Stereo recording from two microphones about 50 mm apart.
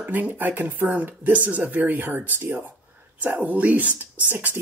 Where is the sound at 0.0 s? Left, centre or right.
Right.